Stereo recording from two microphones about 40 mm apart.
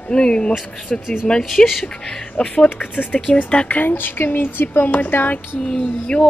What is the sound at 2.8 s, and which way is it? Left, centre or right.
Speech, left.